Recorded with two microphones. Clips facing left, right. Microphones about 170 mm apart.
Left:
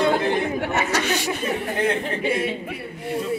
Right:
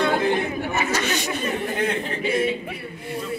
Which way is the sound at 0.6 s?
75° left (ahead or behind).